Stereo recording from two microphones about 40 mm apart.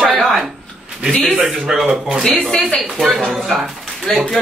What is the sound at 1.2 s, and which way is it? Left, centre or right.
Speech, centre.